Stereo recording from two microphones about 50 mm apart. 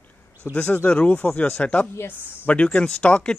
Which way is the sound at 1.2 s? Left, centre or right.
Left.